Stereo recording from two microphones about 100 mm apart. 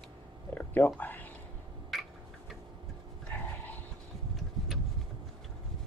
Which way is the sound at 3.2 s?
15° left (ahead or behind).